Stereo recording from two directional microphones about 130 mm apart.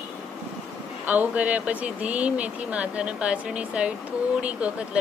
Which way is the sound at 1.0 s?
10° right (ahead or behind).